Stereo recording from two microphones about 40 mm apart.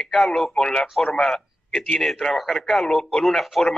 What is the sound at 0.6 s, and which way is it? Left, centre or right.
A man's voice, centre.